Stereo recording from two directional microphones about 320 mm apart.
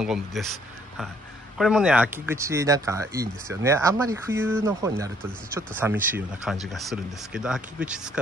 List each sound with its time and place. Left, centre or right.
0.0 s speech: centre
1.6 s speech: centre